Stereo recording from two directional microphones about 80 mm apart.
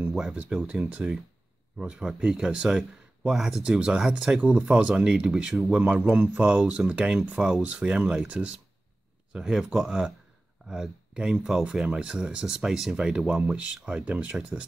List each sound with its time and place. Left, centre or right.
0.1 s speech: centre
0.7 s speech: centre
4.4 s speech: centre
9.3 s speech: centre